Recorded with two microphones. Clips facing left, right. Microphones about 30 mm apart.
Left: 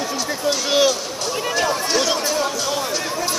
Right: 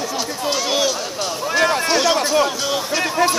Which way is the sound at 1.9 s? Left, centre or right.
Centre.